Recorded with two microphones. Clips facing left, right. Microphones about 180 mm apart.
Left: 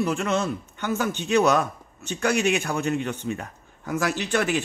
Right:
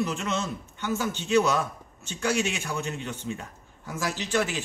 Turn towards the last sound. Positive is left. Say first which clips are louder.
# left 3 dB
turn(degrees=60)  # may be behind; listen again after turning